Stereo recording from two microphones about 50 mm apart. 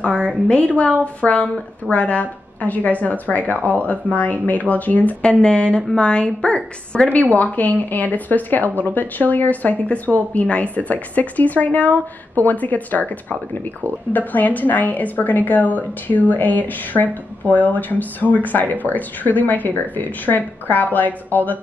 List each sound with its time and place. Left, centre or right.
0.0 s a sound: left
0.5 s a woman's voice: left
5.2 s a woman's voice: centre
7.5 s a woman's voice: left